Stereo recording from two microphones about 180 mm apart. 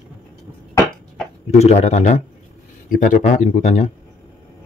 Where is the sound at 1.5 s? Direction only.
35° left (ahead or behind).